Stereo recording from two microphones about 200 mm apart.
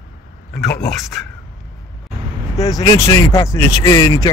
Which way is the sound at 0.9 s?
Centre (ahead or behind).